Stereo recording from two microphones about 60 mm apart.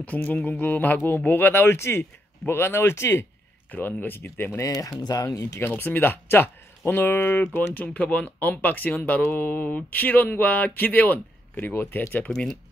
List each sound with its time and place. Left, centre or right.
0.0 s speech: left
3.7 s speech: left
5.0 s speech: left
5.6 s speech: left
12.3 s speech: centre